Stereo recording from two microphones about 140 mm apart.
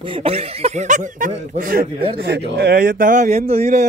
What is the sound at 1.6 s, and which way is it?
A man's voice, 90° right.